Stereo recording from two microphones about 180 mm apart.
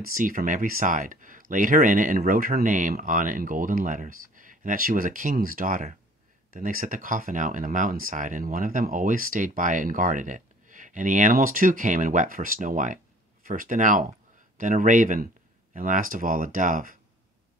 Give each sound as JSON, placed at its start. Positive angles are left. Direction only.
{"t": 0.0, "sound": "speech", "side_deg": -50}